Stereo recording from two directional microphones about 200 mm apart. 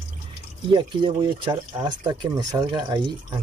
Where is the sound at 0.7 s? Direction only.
25° right (ahead or behind).